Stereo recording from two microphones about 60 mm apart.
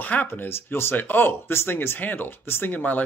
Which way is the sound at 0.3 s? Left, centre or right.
Left.